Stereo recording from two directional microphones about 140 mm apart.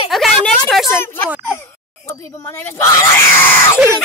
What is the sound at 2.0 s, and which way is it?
Speech, 15° left (ahead or behind).